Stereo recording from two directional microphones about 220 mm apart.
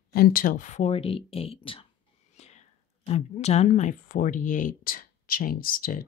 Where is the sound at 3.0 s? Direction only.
30° left (ahead or behind).